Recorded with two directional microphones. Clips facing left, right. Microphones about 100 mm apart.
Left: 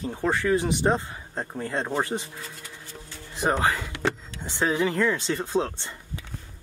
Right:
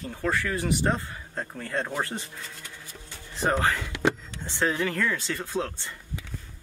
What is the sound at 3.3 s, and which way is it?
Speech, 15° left (ahead or behind).